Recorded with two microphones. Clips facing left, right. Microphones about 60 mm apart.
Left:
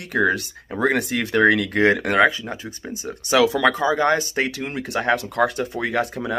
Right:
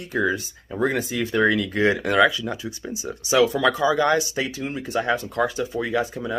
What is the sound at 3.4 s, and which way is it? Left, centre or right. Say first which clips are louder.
Speech: left 1 dB; left.